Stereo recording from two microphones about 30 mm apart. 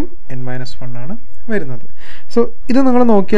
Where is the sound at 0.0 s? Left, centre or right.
Left.